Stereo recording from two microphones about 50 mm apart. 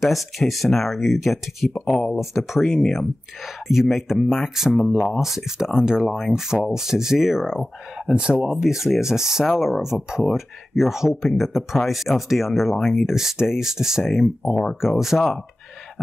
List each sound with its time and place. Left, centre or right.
0.0 s speech: centre
1.9 s speech: centre
2.1 s speech: centre
8.1 s speech: right
8.5 s speech: centre
13.0 s speech: centre
14.4 s speech: centre
14.8 s speech: centre